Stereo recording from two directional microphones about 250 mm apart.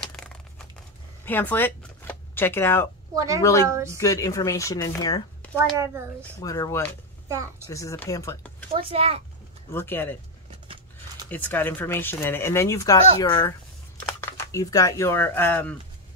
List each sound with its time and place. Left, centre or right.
1.2 s speech: centre
3.6 s speech: centre
4.0 s speech: centre
7.2 s a child's voice: centre
7.6 s speech: centre
8.7 s a child's voice: right
9.7 s speech: centre
11.2 s speech: centre